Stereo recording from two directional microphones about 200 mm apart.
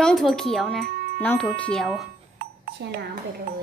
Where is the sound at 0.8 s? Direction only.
50° right (ahead or behind).